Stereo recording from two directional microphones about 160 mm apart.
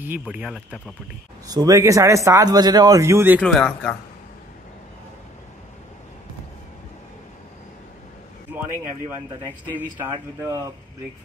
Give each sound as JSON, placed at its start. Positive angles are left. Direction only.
{"t": 0.0, "sound": "speech", "side_deg": -10}
{"t": 1.5, "sound": "a man's voice", "side_deg": -20}
{"t": 3.3, "sound": "speech", "side_deg": 5}
{"t": 9.8, "sound": "speech", "side_deg": -15}